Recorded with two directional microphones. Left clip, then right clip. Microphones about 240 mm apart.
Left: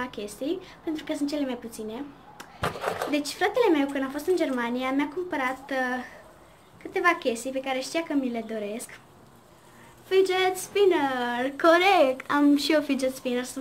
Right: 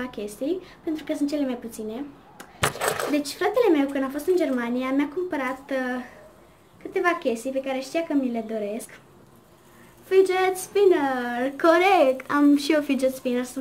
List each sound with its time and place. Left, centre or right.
0.0 s a woman's voice: centre
10.0 s a woman's voice: centre